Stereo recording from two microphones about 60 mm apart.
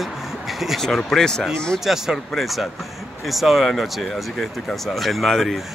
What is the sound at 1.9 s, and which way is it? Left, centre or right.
Speech, centre.